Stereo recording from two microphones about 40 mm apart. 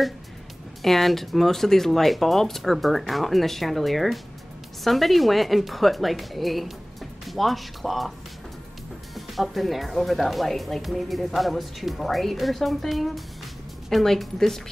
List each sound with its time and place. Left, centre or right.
0.8 s speech: centre
9.1 s a woman's voice: centre